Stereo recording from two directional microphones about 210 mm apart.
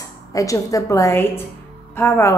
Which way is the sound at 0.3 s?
15° left (ahead or behind).